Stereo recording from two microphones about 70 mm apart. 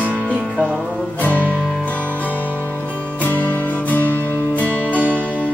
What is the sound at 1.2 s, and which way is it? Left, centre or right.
Music, left.